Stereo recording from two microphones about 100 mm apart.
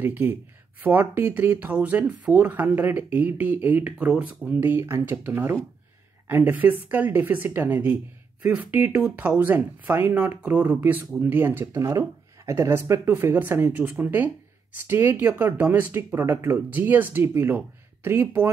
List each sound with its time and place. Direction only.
0.0 s speech: 20° right (ahead or behind)
11.6 s speech: 30° right (ahead or behind)